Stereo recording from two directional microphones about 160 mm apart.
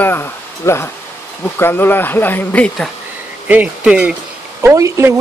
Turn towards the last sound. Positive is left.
turn(degrees=-20)  # may be behind; listen again after turning